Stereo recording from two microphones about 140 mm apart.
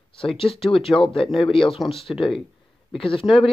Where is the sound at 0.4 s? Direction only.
40° left (ahead or behind).